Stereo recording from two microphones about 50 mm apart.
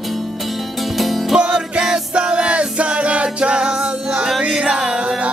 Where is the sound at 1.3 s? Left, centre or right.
Centre.